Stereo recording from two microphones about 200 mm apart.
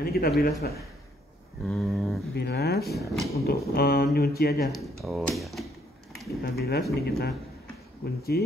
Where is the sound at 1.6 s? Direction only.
Centre (ahead or behind).